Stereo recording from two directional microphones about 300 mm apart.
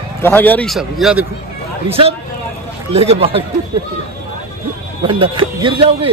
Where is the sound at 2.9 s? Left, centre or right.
Centre.